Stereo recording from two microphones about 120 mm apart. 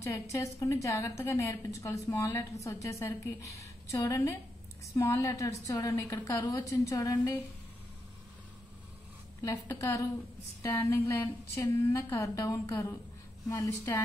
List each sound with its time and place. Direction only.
0.0 s a woman's voice: 25° left (ahead or behind)
9.4 s a woman's voice: 30° left (ahead or behind)